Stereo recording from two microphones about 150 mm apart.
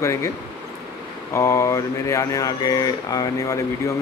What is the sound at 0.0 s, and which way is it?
Speech, 20° left (ahead or behind).